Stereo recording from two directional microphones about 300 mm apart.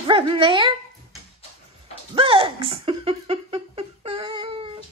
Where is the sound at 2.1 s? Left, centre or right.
Centre.